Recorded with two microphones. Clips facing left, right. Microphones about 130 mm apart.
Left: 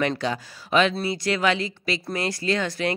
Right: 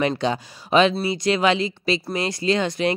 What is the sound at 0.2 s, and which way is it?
Speech, 20° right (ahead or behind).